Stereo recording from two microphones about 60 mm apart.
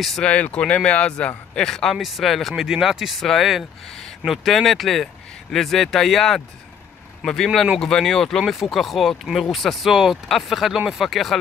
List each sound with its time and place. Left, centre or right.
0.2 s speech: centre
2.0 s speech: centre
2.6 s speech: centre